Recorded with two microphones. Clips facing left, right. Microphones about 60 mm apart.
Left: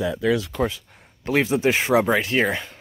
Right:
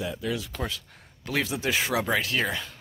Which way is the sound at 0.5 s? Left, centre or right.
Left.